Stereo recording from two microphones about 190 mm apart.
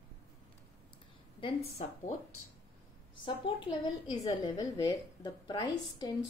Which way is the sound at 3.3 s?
25° left (ahead or behind).